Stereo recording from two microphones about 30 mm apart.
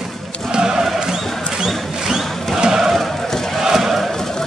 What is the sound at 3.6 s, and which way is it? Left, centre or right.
Chant, centre.